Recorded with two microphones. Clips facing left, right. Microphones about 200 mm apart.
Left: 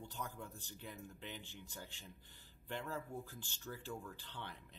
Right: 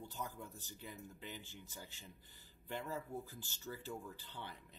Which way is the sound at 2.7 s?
10° right (ahead or behind).